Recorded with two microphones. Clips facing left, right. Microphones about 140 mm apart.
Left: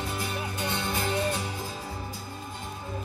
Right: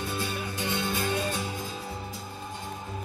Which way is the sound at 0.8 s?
25° left (ahead or behind).